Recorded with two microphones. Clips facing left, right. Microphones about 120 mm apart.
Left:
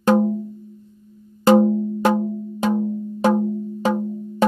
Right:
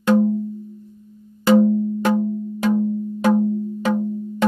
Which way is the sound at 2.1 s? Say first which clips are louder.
Right 1 dB; 25° left (ahead or behind).